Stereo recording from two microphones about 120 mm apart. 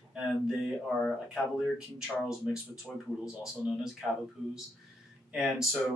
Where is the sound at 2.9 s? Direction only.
5° left (ahead or behind).